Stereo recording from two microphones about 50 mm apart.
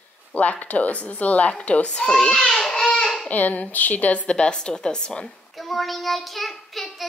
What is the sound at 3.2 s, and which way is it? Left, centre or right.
A woman's voice, left.